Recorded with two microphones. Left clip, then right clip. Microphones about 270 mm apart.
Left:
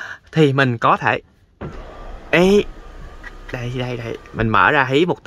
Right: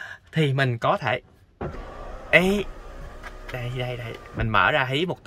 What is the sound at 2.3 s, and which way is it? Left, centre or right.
Speech, centre.